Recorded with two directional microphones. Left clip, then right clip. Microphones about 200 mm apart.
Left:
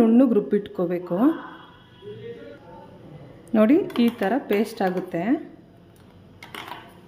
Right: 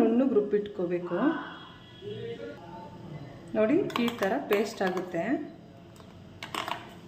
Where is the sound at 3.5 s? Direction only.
55° left (ahead or behind).